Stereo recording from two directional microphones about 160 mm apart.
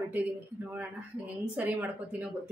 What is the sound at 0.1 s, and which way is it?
Speech, 10° right (ahead or behind).